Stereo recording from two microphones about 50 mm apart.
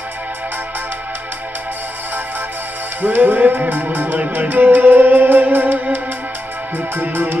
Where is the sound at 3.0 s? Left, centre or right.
Right.